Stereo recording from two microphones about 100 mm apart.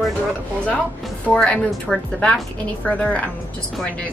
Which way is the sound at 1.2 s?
15° left (ahead or behind).